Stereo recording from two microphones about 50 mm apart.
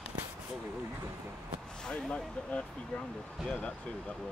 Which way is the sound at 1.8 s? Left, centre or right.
Centre.